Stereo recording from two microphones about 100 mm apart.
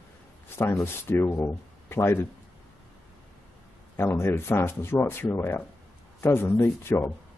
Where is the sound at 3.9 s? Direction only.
25° left (ahead or behind).